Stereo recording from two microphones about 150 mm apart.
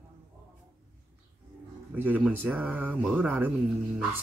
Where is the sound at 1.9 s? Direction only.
10° right (ahead or behind).